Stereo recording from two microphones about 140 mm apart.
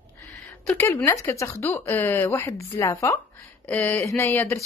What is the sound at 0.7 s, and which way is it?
Speech, 15° left (ahead or behind).